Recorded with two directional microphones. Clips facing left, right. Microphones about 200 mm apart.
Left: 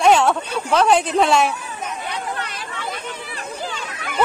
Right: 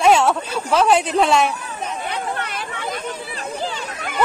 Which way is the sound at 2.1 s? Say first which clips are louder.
Right 2 dB; 55° right (ahead or behind).